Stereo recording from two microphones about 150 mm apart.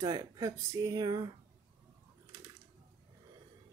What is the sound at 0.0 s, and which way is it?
Speech, 25° right (ahead or behind).